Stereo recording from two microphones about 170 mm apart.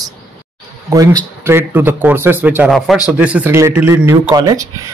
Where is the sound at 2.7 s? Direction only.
Centre (ahead or behind); by 4.8 s 20° right (ahead or behind).